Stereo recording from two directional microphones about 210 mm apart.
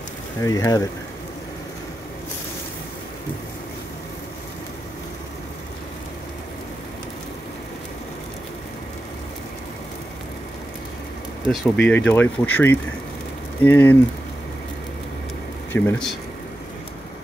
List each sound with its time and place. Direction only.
0.4 s speech: 15° left (ahead or behind)
11.6 s speech: 5° left (ahead or behind)
15.7 s speech: 5° left (ahead or behind)